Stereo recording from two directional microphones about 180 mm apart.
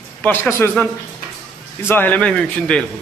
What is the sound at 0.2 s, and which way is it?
Speech, 10° left (ahead or behind).